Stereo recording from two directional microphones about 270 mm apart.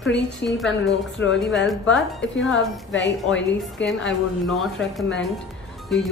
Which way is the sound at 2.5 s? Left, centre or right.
Left.